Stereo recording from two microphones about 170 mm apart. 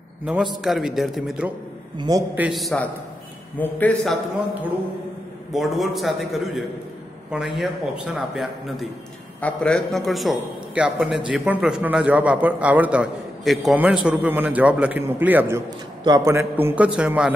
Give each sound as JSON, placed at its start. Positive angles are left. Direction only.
{"t": 0.2, "sound": "a man's voice", "side_deg": -5}
{"t": 2.0, "sound": "a man's voice", "side_deg": -20}
{"t": 2.3, "sound": "a man's voice", "side_deg": -5}
{"t": 5.5, "sound": "a man's voice", "side_deg": 0}